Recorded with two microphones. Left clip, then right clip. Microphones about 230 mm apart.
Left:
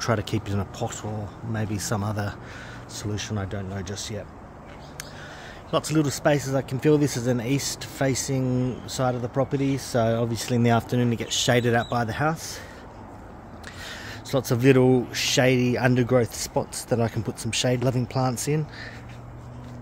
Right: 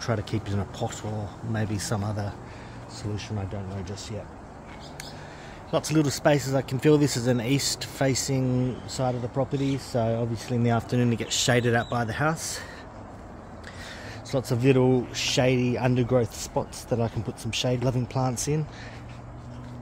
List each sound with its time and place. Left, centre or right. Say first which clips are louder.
0.0 s speech: left 4 dB; centre
5.7 s speech: left 1 dB; centre
13.8 s speech: left 4 dB; centre